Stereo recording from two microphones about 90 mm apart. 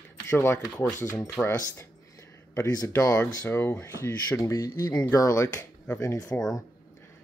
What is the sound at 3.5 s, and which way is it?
Speech, 25° left (ahead or behind).